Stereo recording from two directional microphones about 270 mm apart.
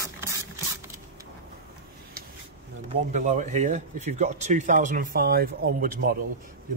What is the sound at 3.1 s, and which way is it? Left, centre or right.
Speech, right.